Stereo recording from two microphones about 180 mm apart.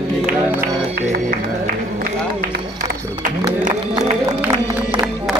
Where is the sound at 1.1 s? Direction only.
50° right (ahead or behind).